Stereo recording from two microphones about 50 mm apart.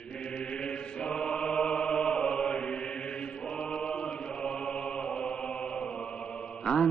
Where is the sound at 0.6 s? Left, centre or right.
Centre.